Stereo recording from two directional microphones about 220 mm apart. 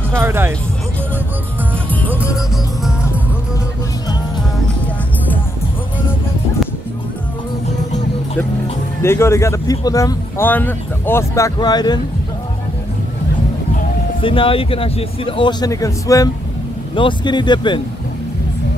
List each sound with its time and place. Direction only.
0.2 s speech: 10° right (ahead or behind)
9.0 s speech: 10° left (ahead or behind)
14.2 s speech: 25° left (ahead or behind)